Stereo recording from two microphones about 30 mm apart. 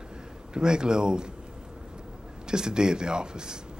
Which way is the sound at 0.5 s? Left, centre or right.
Right.